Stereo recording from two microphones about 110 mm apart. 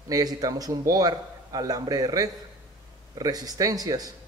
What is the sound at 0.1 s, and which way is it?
Speech, 35° right (ahead or behind).